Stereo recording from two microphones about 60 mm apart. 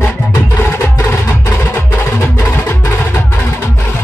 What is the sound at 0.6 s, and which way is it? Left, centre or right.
Music, left.